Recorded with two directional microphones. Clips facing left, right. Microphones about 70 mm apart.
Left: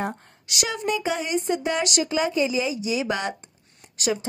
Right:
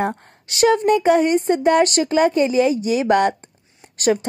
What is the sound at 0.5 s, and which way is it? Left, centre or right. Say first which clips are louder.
A woman's voice: right 11 dB; right.